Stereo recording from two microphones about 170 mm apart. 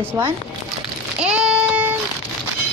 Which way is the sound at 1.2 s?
5° right (ahead or behind).